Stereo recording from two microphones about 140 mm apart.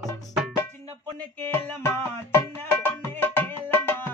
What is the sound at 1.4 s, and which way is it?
Music, 15° left (ahead or behind).